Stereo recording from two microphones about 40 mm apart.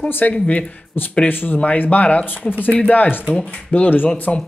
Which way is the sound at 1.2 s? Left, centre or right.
Left.